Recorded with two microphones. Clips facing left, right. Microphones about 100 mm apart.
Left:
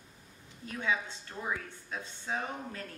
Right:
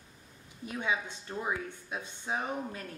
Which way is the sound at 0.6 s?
15° right (ahead or behind).